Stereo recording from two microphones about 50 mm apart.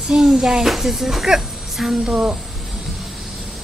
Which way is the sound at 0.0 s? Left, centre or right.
Centre.